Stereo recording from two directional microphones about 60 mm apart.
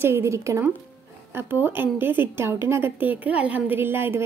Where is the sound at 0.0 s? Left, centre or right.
Right.